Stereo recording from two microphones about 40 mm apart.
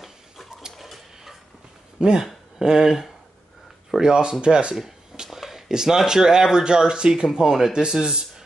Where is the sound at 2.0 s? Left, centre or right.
Centre.